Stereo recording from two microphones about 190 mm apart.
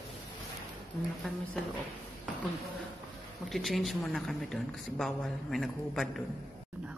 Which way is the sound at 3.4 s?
Centre (ahead or behind).